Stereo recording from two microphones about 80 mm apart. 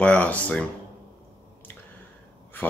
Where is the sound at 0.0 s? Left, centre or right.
Centre.